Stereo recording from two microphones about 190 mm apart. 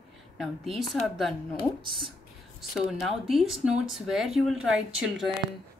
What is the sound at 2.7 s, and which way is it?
Speech, centre (ahead or behind).